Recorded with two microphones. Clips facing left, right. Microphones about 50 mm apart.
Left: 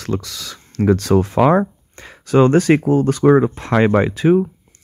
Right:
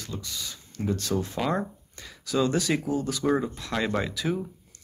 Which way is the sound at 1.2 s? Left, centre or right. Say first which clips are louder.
Left 14 dB; left.